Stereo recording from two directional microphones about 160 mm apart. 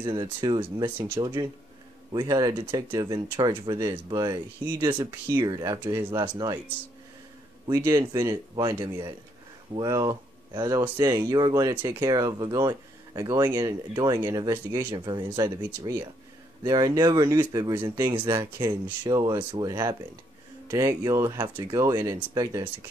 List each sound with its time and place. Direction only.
0.0 s speech: 30° right (ahead or behind)
7.6 s speech: 20° right (ahead or behind)